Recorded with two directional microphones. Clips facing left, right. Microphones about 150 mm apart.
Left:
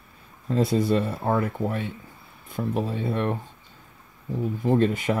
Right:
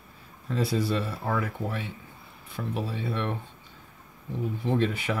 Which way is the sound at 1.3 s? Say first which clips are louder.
Left 5 dB; 30° left (ahead or behind).